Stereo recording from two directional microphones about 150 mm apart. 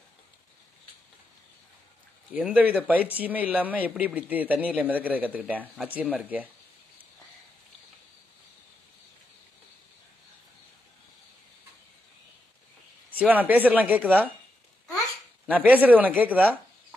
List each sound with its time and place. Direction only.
2.3 s speech: 10° right (ahead or behind)
13.1 s speech: 10° right (ahead or behind)
15.4 s speech: 10° right (ahead or behind)